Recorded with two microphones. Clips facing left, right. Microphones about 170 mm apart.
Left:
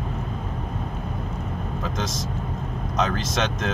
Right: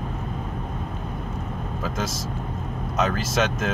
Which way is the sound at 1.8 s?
5° right (ahead or behind).